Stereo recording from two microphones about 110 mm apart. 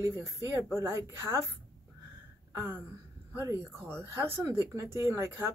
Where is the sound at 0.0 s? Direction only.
30° right (ahead or behind).